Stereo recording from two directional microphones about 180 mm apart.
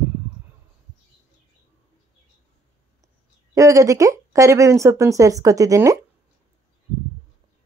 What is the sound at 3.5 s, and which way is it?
Speech, 15° right (ahead or behind).